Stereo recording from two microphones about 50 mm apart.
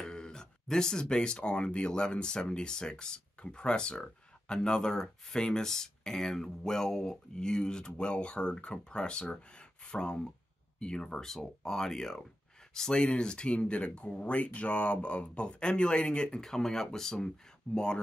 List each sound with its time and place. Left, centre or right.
0.0 s speech: centre